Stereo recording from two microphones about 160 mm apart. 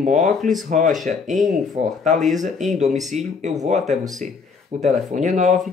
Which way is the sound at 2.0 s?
50° right (ahead or behind).